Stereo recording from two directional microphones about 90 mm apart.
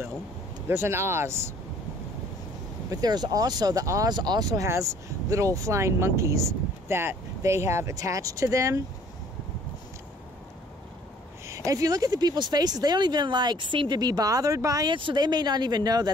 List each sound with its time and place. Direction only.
0.7 s speech: 25° right (ahead or behind)
2.9 s speech: 45° right (ahead or behind)
4.1 s speech: 50° right (ahead or behind); by 8.8 s 35° right (ahead or behind)
11.4 s speech: 35° right (ahead or behind)
14.9 s speech: 65° right (ahead or behind); by 16.1 s 50° right (ahead or behind)